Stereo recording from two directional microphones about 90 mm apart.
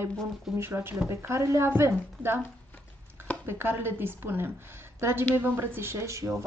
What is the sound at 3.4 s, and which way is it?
A woman's voice, 25° right (ahead or behind).